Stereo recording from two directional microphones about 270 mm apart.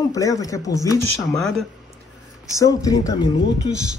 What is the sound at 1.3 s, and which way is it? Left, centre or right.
Speech, centre.